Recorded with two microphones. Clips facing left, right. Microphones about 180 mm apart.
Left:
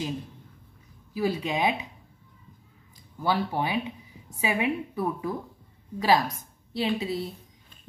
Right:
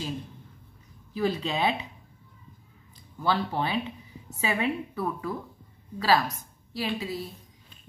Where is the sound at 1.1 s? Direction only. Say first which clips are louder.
Left 1 dB; 10° left (ahead or behind).